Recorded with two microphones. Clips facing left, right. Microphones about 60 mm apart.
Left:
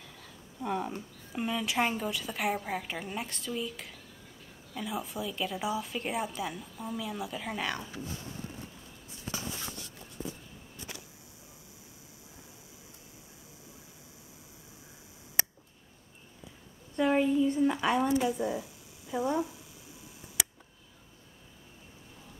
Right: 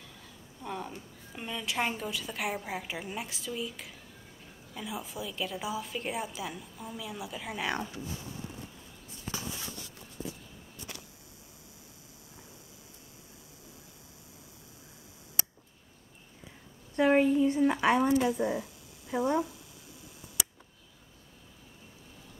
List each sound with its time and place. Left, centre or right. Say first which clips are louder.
0.6 s a woman's voice: left 5 dB; centre
16.9 s a sound: right 2 dB; right
17.6 s speech: right 2 dB; right
18.3 s a woman's voice: right 2 dB; centre